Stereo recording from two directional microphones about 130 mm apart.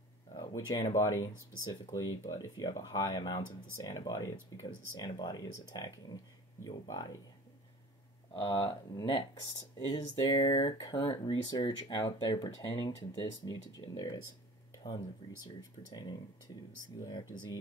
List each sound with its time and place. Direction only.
0.3 s speech: 35° left (ahead or behind)
8.4 s speech: 35° left (ahead or behind)
15.4 s speech: 30° left (ahead or behind)